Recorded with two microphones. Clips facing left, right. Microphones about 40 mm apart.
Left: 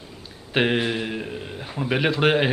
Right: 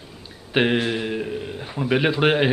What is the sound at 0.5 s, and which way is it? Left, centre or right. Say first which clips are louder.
A man's voice: right 1 dB; centre.